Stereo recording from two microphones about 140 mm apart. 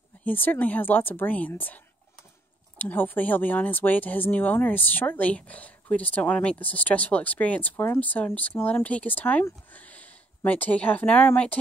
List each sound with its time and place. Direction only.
0.2 s speech: 15° left (ahead or behind)
2.8 s speech: 10° left (ahead or behind)